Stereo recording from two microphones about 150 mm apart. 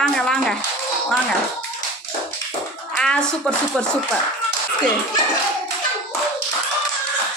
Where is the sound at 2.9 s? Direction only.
5° left (ahead or behind).